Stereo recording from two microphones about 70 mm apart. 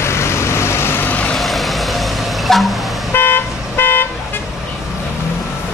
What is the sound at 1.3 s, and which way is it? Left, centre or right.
Vehicle, centre.